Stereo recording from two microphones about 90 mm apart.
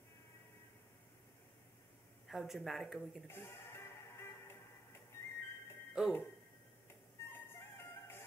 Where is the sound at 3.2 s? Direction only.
25° left (ahead or behind).